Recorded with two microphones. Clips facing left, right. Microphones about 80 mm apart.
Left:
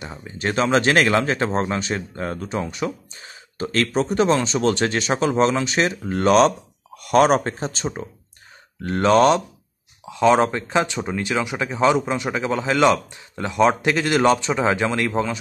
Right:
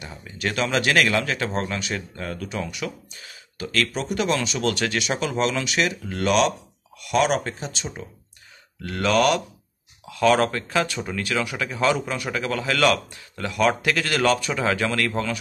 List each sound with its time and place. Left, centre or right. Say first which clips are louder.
0.0 s speech: left 3 dB; left